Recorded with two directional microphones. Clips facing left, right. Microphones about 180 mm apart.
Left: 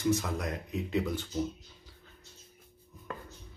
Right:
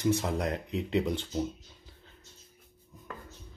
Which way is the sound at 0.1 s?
30° right (ahead or behind).